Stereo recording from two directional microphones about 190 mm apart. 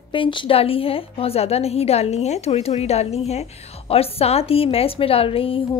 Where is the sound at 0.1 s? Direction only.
25° left (ahead or behind).